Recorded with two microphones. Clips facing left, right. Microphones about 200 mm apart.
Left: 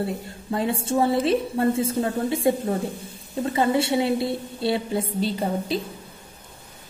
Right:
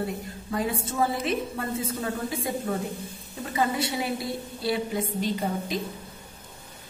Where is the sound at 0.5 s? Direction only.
25° left (ahead or behind).